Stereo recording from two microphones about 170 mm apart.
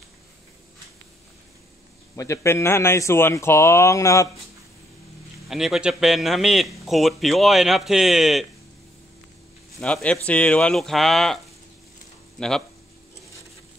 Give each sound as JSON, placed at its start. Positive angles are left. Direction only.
{"t": 2.1, "sound": "speech", "side_deg": 20}
{"t": 5.5, "sound": "speech", "side_deg": 0}
{"t": 9.8, "sound": "speech", "side_deg": 5}